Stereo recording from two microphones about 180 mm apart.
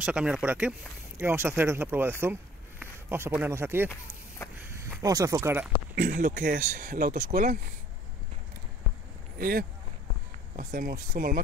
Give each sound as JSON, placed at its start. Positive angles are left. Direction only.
{"t": 0.0, "sound": "speech", "side_deg": -5}
{"t": 4.4, "sound": "speech", "side_deg": 15}
{"t": 5.0, "sound": "speech", "side_deg": -20}
{"t": 5.9, "sound": "speech", "side_deg": -50}
{"t": 9.4, "sound": "speech", "side_deg": -55}